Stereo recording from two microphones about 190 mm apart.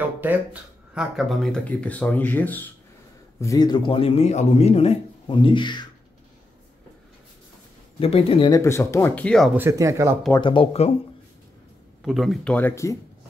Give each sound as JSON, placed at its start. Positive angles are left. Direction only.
{"t": 0.0, "sound": "a man's voice", "side_deg": -10}
{"t": 8.0, "sound": "speech", "side_deg": 30}
{"t": 8.5, "sound": "speech", "side_deg": 15}
{"t": 9.6, "sound": "speech", "side_deg": -15}
{"t": 10.4, "sound": "speech", "side_deg": 30}
{"t": 12.0, "sound": "speech", "side_deg": 0}